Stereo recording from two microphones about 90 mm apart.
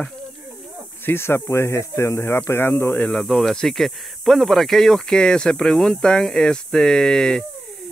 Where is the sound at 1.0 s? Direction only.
25° left (ahead or behind); by 7.4 s 5° left (ahead or behind).